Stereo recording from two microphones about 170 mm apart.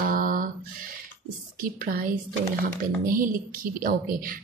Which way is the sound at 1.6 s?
55° right (ahead or behind).